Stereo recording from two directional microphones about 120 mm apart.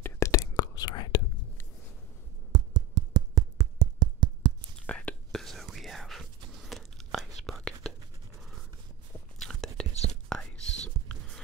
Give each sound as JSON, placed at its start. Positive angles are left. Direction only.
{"t": 0.0, "sound": "whispering", "side_deg": 25}
{"t": 2.5, "sound": "a sound", "side_deg": -35}
{"t": 4.7, "sound": "whispering", "side_deg": 10}
{"t": 9.4, "sound": "whispering", "side_deg": 5}